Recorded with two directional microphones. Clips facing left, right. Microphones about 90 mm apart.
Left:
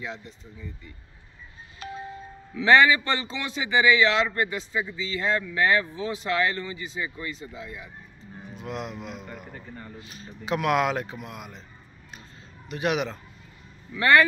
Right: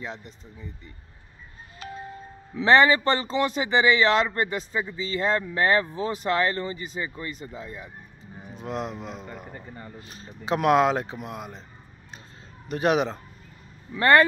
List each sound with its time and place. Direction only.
2.5 s a man's voice: 35° right (ahead or behind)
9.5 s speech: 10° right (ahead or behind)
9.9 s a man's voice: 35° right (ahead or behind)
12.6 s a man's voice: 40° right (ahead or behind)